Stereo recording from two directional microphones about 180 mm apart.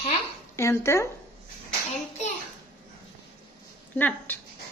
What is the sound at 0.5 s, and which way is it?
Speech, 15° left (ahead or behind).